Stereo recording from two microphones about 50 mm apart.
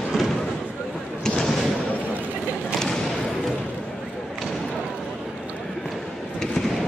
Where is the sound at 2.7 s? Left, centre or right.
Centre.